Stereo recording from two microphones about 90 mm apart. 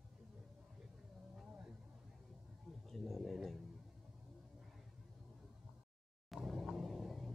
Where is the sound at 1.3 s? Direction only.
10° right (ahead or behind).